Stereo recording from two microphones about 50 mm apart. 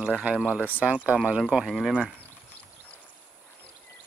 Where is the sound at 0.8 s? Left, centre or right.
Right.